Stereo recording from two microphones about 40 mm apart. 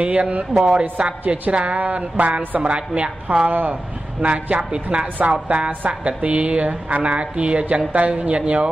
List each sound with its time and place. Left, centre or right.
0.0 s a woman's voice: right